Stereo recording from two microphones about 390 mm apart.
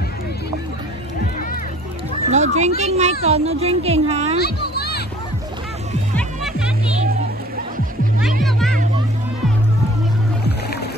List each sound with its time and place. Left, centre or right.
2.3 s speech: centre
4.4 s children playing: left
6.1 s music: centre
8.5 s music: centre